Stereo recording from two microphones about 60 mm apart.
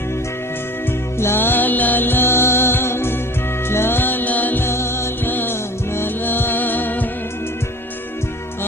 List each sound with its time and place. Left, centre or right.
1.2 s music: left
4.6 s music: left